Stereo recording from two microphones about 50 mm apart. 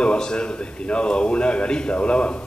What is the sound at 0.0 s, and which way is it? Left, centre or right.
A man's voice, centre.